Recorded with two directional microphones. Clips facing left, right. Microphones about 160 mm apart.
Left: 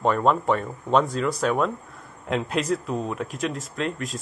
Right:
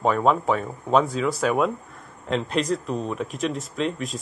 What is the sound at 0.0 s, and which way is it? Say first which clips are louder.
Speech: right 1 dB; centre (ahead or behind).